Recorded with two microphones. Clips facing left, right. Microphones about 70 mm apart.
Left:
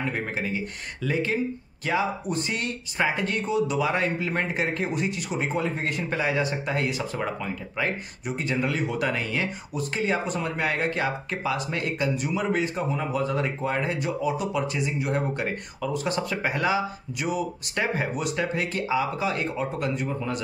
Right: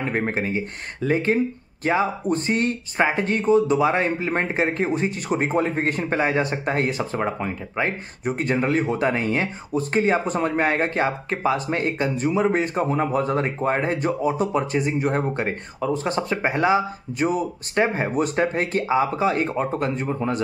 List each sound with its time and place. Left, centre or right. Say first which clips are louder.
0.0 s speech: right 5 dB; right
12.6 s speech: right 6 dB; right